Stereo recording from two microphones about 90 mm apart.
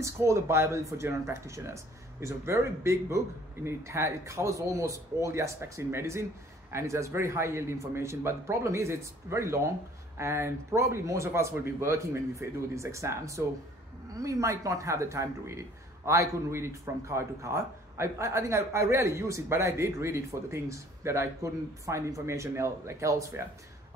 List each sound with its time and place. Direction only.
0.0 s speech: 30° right (ahead or behind)